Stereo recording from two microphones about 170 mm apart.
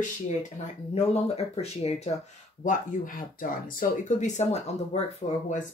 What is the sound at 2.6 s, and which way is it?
Speech, 50° left (ahead or behind).